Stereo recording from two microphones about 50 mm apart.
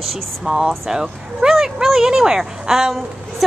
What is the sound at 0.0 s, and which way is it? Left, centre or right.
Speech, centre.